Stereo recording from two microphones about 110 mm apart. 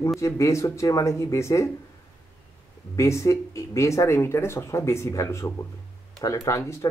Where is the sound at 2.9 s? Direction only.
25° left (ahead or behind).